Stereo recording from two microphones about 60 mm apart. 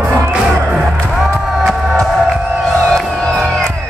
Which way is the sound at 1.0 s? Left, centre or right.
Centre.